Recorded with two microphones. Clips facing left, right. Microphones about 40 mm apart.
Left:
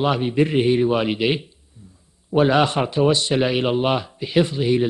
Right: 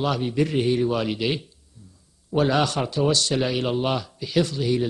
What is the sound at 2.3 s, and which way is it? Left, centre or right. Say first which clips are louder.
A man's voice: left 4 dB; left.